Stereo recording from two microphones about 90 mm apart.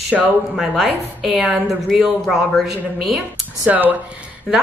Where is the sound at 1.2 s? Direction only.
5° right (ahead or behind).